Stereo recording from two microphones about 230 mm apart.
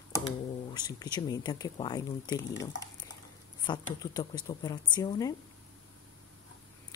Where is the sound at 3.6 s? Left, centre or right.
Centre.